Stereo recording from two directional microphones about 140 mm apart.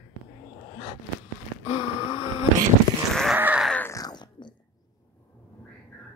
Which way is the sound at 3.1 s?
Centre (ahead or behind).